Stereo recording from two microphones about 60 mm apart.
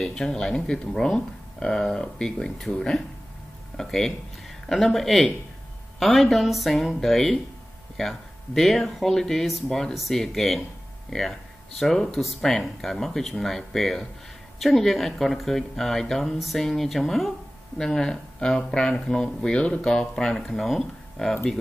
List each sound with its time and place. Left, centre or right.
0.0 s speech: centre